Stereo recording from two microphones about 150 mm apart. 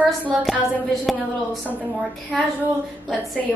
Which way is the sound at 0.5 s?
Centre (ahead or behind).